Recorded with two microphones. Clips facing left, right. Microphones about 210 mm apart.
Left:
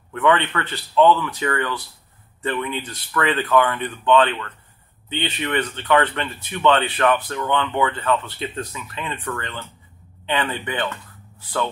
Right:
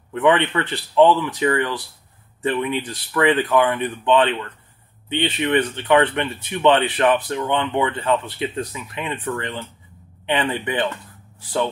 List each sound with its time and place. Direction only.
0.1 s speech: 20° right (ahead or behind)